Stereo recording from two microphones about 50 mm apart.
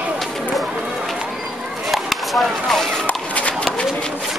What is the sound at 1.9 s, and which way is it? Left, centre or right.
Chop, centre.